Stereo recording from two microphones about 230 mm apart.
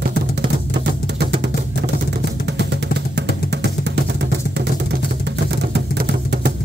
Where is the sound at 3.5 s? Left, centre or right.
Right.